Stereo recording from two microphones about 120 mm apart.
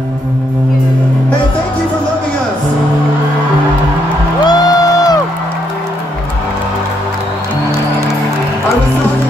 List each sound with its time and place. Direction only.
4.5 s music: 35° left (ahead or behind)